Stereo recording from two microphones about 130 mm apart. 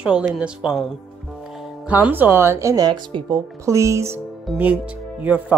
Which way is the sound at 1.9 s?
15° right (ahead or behind).